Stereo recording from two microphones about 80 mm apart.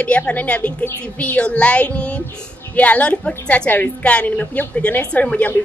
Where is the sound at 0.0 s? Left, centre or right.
Centre.